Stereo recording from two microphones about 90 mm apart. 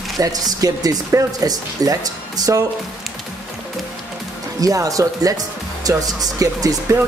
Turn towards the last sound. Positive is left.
turn(degrees=-40)  # may be behind; listen again after turning